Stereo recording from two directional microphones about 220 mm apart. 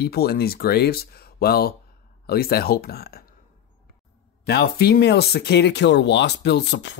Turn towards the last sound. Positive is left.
turn(degrees=55)  # may be behind; listen again after turning